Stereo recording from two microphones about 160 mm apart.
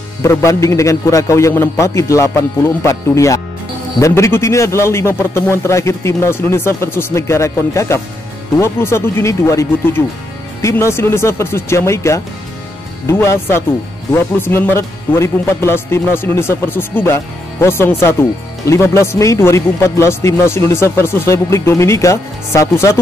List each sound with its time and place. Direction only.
0.2 s a man's voice: 20° left (ahead or behind)